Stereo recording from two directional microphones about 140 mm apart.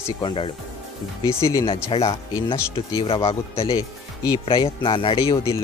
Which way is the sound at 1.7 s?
40° left (ahead or behind).